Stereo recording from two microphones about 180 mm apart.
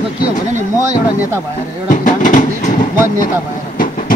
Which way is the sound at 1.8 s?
45° left (ahead or behind).